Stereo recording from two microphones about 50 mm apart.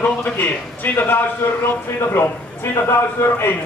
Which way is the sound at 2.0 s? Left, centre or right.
Left.